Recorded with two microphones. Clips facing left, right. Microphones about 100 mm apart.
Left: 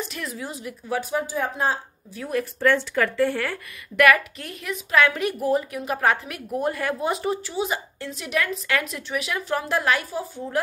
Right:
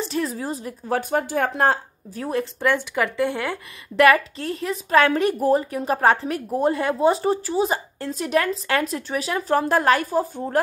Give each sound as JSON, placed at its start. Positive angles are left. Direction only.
{"t": 0.0, "sound": "a woman's voice", "side_deg": -30}
{"t": 1.2, "sound": "speech", "side_deg": -65}
{"t": 2.1, "sound": "a woman's voice", "side_deg": -30}
{"t": 2.6, "sound": "a woman's voice", "side_deg": -15}
{"t": 4.0, "sound": "a woman's voice", "side_deg": -30}